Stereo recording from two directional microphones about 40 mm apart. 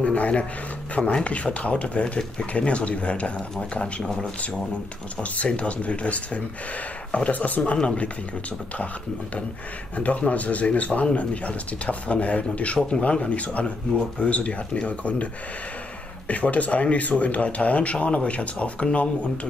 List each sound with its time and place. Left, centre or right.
0.0 s a sound: left
1.2 s speech: left
3.8 s speech: centre
5.2 s speech: left
7.3 s speech: left
7.7 s speech: left
9.9 s speech: left
12.7 s speech: left
16.3 s speech: left